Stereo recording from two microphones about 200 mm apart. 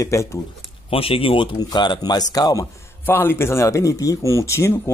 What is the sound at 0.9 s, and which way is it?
Speech, 30° left (ahead or behind).